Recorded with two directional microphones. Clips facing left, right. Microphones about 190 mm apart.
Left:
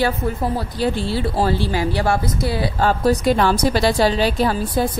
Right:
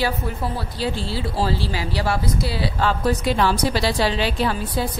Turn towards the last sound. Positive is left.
turn(degrees=40)  # may be behind; listen again after turning